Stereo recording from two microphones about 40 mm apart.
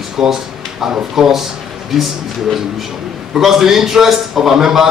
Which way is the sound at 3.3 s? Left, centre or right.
Centre.